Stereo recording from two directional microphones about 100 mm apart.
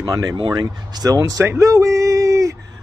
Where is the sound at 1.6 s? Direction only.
35° right (ahead or behind).